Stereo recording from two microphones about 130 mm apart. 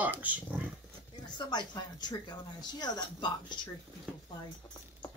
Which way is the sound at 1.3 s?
35° left (ahead or behind).